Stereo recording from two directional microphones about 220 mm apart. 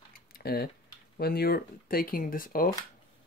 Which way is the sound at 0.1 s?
45° left (ahead or behind).